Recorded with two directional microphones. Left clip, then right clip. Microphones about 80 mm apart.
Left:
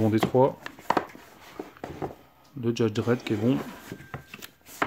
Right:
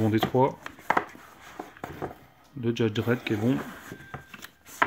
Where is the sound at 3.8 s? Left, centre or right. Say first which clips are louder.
Even; centre.